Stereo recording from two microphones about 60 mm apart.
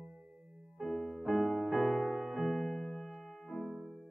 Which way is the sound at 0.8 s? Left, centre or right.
Centre.